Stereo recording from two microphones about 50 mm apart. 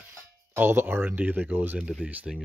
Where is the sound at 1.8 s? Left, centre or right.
Right.